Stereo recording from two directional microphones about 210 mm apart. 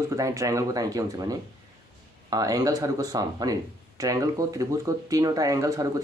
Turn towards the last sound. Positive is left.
turn(degrees=-15)  # may be behind; listen again after turning